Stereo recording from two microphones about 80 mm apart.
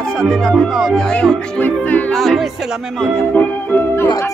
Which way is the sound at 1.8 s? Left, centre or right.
Left.